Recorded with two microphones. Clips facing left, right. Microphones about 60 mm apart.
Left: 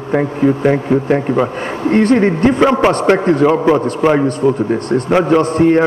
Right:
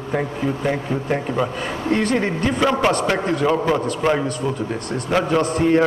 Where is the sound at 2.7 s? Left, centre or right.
Left.